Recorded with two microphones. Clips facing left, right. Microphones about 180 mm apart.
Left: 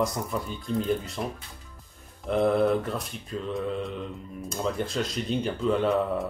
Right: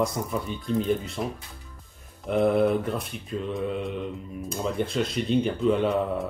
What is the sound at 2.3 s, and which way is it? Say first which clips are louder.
Speech: right 1 dB; centre (ahead or behind).